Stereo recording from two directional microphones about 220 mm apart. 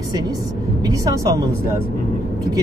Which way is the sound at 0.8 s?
15° right (ahead or behind).